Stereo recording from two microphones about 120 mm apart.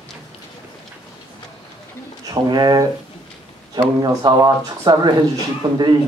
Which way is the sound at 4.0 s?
30° right (ahead or behind).